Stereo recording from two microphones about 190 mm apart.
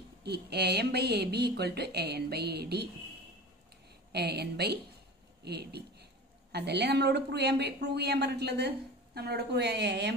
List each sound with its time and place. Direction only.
0.2 s a woman's voice: 60° right (ahead or behind)
4.1 s a woman's voice: 60° right (ahead or behind)